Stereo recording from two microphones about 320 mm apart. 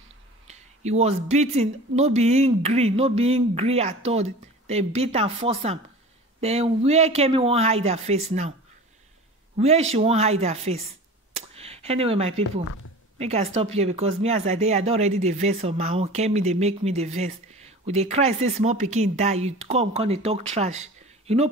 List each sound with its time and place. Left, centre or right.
0.5 s speech: right
9.6 s speech: centre
11.3 s a sound: centre
13.2 s speech: centre